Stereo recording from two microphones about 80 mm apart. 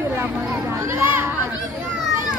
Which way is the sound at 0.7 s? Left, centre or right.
Right.